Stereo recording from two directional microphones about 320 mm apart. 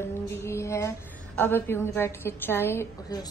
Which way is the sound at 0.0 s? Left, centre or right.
Centre.